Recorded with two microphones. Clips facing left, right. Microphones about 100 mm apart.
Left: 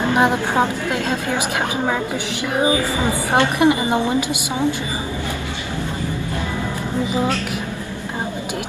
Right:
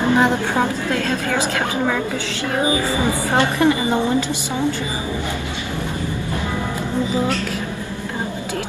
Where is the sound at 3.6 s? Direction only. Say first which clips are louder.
Left 1 dB; 15° left (ahead or behind).